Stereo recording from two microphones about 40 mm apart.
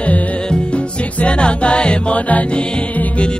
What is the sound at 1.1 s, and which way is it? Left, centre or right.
Music, left.